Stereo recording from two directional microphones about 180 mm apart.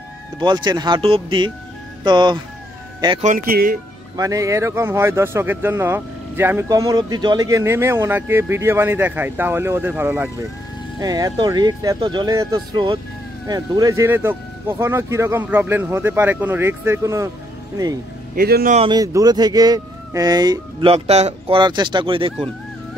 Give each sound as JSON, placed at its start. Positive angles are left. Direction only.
{"t": 0.4, "sound": "speech", "side_deg": -25}
{"t": 3.2, "sound": "speech", "side_deg": -45}
{"t": 4.2, "sound": "speech", "side_deg": -20}
{"t": 18.3, "sound": "speech", "side_deg": -55}
{"t": 18.8, "sound": "speech", "side_deg": -20}